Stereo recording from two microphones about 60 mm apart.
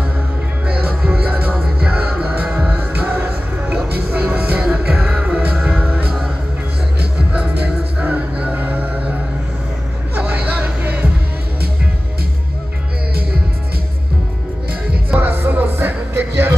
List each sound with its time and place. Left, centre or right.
0.7 s music: right
4.6 s music: centre
7.3 s music: right
15.1 s music: right